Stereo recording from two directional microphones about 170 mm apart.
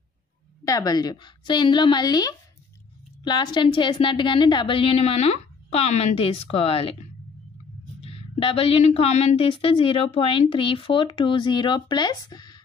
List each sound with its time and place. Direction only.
0.7 s a woman's voice: 20° left (ahead or behind)
8.0 s speech: 35° left (ahead or behind)